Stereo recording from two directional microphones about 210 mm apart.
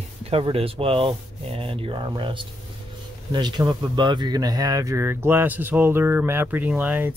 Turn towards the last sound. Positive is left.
turn(degrees=-10)  # may be behind; listen again after turning